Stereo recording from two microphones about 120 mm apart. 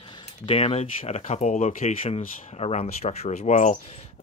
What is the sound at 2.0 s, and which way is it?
Speech, 60° left (ahead or behind).